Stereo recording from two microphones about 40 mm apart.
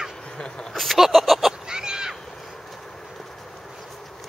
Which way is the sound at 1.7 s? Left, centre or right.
Centre.